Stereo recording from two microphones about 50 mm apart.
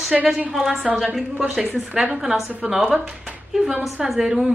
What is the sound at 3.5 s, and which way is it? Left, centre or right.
A woman's voice, centre.